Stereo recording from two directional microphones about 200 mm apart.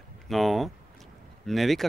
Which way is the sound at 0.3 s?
Centre (ahead or behind).